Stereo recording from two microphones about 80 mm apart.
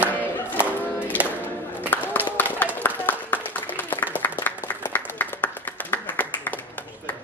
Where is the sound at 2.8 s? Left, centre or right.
Left.